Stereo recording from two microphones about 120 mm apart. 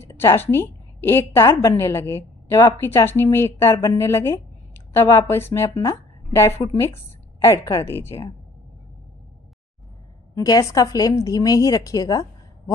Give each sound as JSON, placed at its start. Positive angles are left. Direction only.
{"t": 0.0, "sound": "a woman's voice", "side_deg": 20}
{"t": 10.3, "sound": "a woman's voice", "side_deg": 30}